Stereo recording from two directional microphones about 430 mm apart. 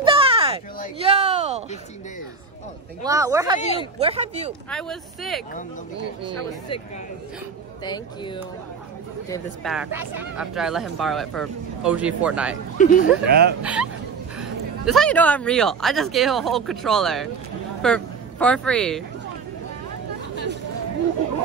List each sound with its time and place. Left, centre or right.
0.0 s a sound: centre
3.0 s speech: centre
3.5 s speech: centre
4.0 s speech: centre
4.6 s speech: centre
9.3 s speech: centre
12.7 s speech: centre
13.3 s speech: right
13.6 s speech: centre
14.9 s speech: centre